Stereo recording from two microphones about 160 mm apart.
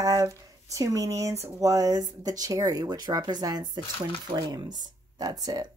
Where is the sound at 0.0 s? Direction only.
20° right (ahead or behind).